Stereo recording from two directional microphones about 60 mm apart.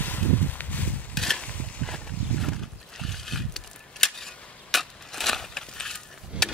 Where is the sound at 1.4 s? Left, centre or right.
Left.